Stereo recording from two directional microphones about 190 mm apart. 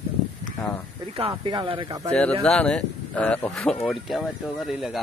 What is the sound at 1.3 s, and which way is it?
Speech, 25° right (ahead or behind).